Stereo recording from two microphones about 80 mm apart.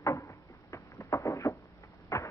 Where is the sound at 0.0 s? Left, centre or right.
Left.